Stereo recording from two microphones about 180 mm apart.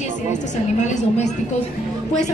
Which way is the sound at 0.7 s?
40° left (ahead or behind).